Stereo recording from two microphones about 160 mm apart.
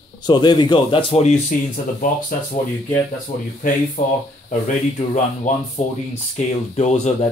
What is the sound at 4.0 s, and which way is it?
Speech, 55° left (ahead or behind).